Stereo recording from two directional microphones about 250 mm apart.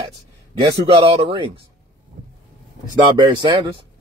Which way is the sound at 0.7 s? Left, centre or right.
Right.